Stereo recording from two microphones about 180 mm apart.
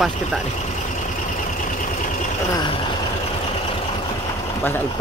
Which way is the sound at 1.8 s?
45° left (ahead or behind).